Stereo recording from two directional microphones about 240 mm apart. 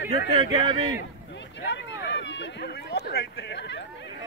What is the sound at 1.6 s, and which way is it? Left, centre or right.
Speech, left.